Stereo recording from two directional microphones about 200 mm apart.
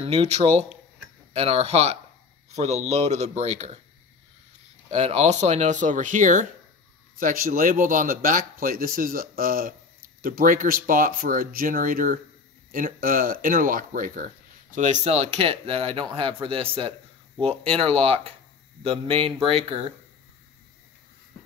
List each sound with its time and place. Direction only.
0.0 s speech: 30° right (ahead or behind)
4.9 s speech: 30° right (ahead or behind)